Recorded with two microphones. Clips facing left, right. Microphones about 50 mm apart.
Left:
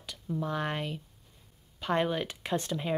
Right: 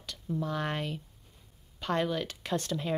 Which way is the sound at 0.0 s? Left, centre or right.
Centre.